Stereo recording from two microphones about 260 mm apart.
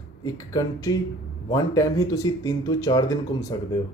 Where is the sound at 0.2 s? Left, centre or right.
Centre.